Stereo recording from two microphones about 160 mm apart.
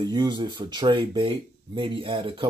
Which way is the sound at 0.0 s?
30° right (ahead or behind).